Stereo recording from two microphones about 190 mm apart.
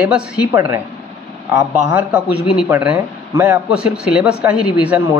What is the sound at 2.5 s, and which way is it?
A man's voice, 5° right (ahead or behind).